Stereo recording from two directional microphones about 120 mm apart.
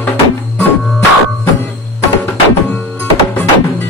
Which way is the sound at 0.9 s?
15° left (ahead or behind).